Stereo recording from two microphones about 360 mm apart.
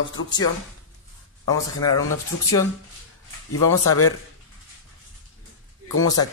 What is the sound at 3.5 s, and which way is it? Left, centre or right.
Speech, left.